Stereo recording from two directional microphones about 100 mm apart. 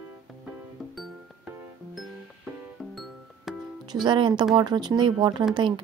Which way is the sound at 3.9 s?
50° right (ahead or behind).